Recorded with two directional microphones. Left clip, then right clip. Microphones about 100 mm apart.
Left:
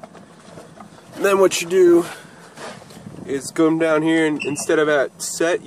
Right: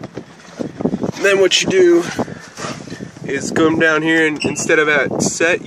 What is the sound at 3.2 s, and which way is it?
Speech, 10° left (ahead or behind).